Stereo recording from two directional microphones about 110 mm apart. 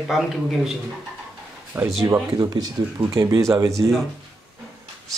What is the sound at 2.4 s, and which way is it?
Speech, 35° right (ahead or behind).